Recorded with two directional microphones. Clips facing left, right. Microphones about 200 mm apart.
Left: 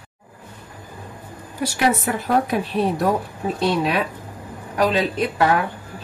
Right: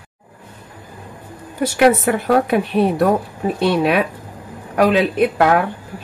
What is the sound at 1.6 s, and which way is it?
Speech, 60° right (ahead or behind).